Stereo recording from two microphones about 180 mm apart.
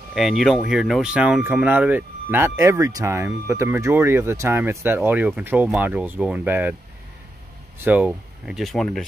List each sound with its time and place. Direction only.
0.1 s speech: centre (ahead or behind)
7.8 s speech: 10° right (ahead or behind)